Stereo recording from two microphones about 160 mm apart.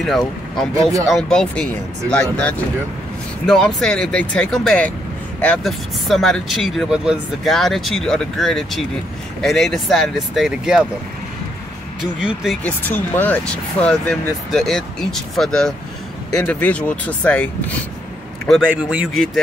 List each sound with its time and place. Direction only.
0.0 s speech: centre (ahead or behind)
12.0 s speech: 5° right (ahead or behind)
12.6 s speech: 10° left (ahead or behind)
18.8 s speech: 5° right (ahead or behind)